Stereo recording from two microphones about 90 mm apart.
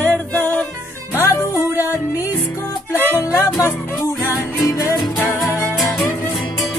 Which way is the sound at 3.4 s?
30° left (ahead or behind).